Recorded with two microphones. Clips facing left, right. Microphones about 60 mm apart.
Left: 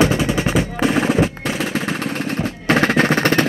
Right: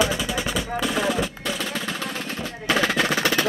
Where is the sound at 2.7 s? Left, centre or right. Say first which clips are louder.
Left 6 dB; left.